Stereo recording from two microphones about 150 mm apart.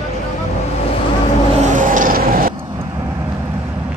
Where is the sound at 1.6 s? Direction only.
55° right (ahead or behind); by 2.5 s 70° right (ahead or behind).